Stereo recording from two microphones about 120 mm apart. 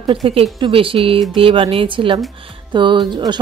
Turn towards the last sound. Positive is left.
turn(degrees=-40)  # may be behind; listen again after turning